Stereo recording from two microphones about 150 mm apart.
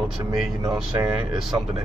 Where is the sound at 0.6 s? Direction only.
25° right (ahead or behind).